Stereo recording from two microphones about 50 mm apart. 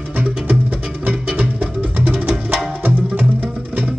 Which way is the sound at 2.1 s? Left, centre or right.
Right.